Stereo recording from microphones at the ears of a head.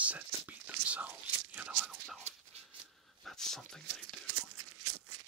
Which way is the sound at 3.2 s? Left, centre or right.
Centre.